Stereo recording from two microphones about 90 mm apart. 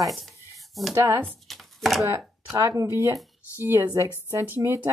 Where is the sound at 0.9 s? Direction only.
30° right (ahead or behind).